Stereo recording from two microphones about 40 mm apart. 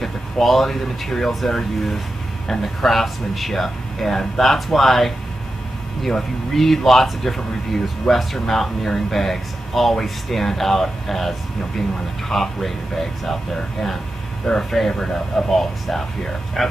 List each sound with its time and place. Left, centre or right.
0.0 s speech: centre